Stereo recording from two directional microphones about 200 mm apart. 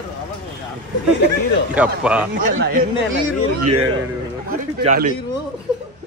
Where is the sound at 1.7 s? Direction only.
5° right (ahead or behind).